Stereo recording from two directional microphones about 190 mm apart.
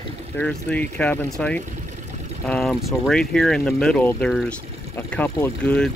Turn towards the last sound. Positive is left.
turn(degrees=5)  # may be behind; listen again after turning